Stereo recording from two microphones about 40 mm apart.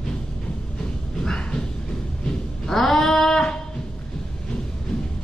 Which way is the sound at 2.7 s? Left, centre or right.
Centre.